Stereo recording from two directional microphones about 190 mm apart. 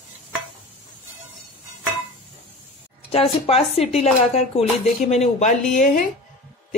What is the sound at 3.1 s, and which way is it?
A woman's voice, 30° left (ahead or behind).